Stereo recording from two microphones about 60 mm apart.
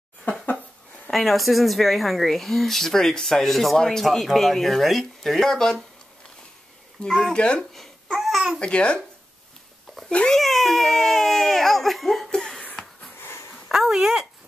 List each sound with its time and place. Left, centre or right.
0.2 s a sound: left
1.1 s speech: centre
7.0 s a child's voice: centre
7.7 s babbling: centre
8.5 s a child's voice: centre
10.3 s speech: centre
12.3 s laughter: centre
13.2 s a sound: left
13.7 s speech: centre